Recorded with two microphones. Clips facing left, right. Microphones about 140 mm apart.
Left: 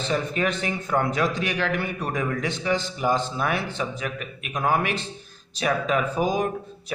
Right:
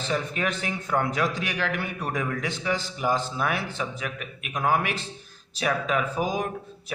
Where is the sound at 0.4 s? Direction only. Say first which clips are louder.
Left 3 dB; 10° right (ahead or behind).